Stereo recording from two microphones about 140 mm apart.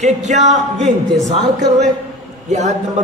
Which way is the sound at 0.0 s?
55° right (ahead or behind).